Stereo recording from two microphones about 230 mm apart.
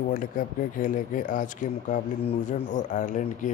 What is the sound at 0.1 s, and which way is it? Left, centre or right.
Speech, left.